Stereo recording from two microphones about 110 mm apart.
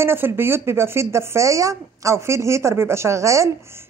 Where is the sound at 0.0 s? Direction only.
20° right (ahead or behind).